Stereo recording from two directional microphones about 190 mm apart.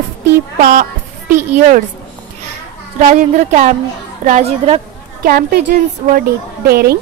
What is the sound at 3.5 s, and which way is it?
A woman's voice, 45° right (ahead or behind).